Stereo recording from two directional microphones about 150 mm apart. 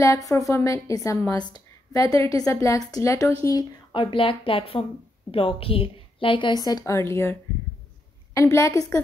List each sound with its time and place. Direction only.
0.0 s a woman's voice: 20° left (ahead or behind)
8.4 s a woman's voice: 20° left (ahead or behind)